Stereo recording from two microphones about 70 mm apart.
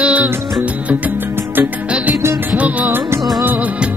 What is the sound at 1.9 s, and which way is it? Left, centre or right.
Music, right.